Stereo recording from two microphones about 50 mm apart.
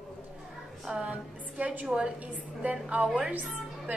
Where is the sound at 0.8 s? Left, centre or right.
Centre.